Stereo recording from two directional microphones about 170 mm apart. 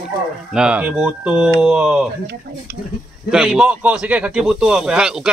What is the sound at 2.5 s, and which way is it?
Speech, 70° right (ahead or behind).